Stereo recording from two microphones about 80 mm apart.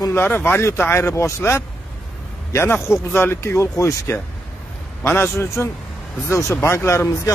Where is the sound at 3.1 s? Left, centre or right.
Left.